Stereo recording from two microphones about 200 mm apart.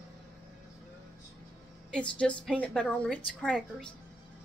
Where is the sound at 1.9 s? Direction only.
5° left (ahead or behind).